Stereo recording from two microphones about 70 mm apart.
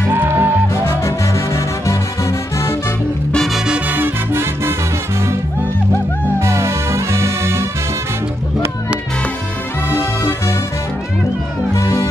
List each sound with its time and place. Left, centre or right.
0.1 s music: right
0.8 s music: left
3.5 s music: centre
3.9 s music: right
6.4 s music: right
9.8 s music: left
11.7 s music: left